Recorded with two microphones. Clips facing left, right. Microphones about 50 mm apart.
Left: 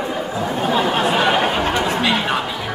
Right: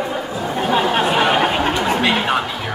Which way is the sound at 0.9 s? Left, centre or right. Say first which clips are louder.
Right 1 dB; centre.